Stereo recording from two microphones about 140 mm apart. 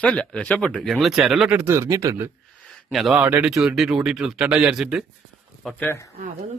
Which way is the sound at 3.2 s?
15° right (ahead or behind).